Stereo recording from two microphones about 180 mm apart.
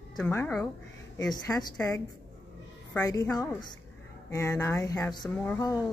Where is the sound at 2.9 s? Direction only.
15° left (ahead or behind).